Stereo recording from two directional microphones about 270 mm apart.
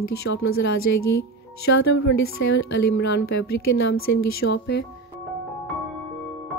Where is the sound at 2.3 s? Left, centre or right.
Left.